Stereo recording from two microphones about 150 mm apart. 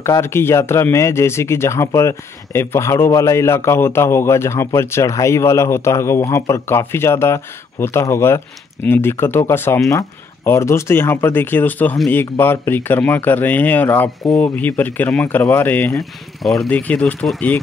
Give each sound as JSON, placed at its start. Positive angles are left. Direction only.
{"t": 0.0, "sound": "speech", "side_deg": 15}
{"t": 16.0, "sound": "speech", "side_deg": 0}